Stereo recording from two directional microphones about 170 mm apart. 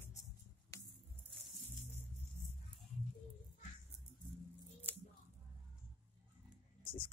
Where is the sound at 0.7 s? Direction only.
20° left (ahead or behind).